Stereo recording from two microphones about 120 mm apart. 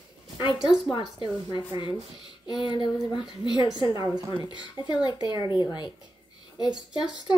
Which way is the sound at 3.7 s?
30° right (ahead or behind).